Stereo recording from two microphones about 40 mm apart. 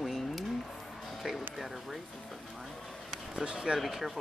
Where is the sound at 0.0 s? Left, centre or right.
Centre.